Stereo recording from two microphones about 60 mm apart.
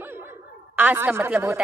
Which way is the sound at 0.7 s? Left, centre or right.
Right.